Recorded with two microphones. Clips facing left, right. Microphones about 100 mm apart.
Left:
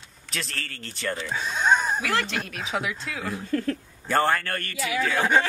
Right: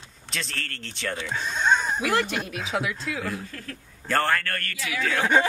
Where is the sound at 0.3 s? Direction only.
Centre (ahead or behind).